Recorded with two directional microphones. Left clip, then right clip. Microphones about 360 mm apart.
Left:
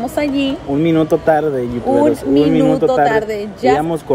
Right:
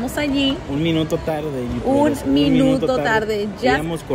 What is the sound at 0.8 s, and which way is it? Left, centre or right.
Speech, left.